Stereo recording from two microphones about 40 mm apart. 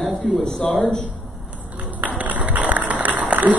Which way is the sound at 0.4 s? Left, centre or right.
Centre.